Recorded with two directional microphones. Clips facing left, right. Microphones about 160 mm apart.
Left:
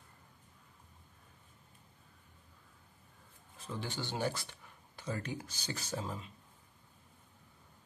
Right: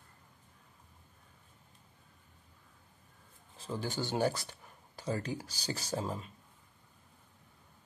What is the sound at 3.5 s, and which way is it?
Speech, 35° right (ahead or behind).